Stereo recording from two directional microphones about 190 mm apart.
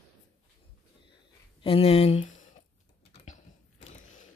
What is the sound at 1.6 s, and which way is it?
Speech, 30° left (ahead or behind).